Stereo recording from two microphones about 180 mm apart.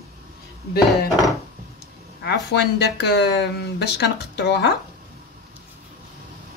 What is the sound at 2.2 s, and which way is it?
Speech, 65° left (ahead or behind).